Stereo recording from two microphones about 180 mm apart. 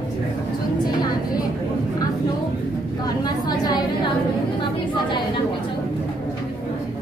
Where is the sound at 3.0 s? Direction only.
20° left (ahead or behind).